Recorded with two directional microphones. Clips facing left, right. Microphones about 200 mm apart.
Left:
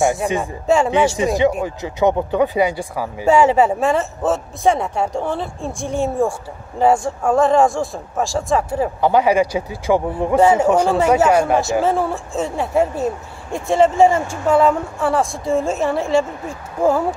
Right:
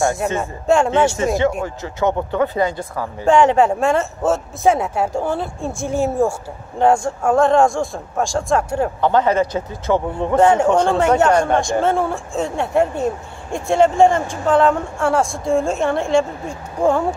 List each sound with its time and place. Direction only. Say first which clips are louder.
0.4 s a man's voice: right 2 dB; centre (ahead or behind)
1.1 s a man's voice: left 1 dB; 15° left (ahead or behind)